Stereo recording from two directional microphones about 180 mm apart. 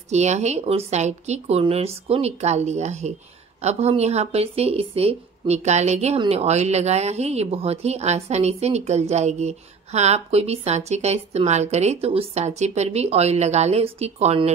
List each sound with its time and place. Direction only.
0.1 s speech: 40° right (ahead or behind)